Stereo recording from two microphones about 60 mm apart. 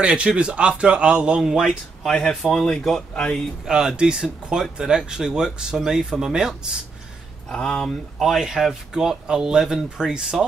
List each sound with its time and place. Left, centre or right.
0.0 s speech: centre
2.0 s speech: centre
3.6 s speech: centre
7.5 s speech: centre
8.2 s speech: centre